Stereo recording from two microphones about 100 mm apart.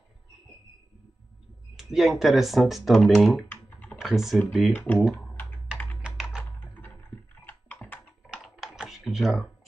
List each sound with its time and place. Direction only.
1.8 s speech: 5° right (ahead or behind)
3.4 s computer keyboard: 15° left (ahead or behind)
4.0 s speech: centre (ahead or behind)
6.0 s computer keyboard: 10° right (ahead or behind)
7.4 s typing: 15° left (ahead or behind)
8.3 s typing: centre (ahead or behind)